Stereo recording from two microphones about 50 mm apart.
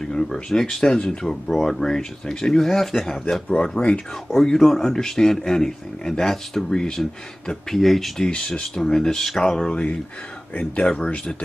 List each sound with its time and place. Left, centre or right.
0.0 s speech: centre
3.5 s speech: centre
4.5 s speech: centre
8.3 s speech: centre
10.5 s speech: left